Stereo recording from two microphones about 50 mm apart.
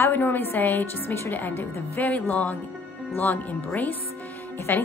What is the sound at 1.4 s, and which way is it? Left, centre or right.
Speech, left.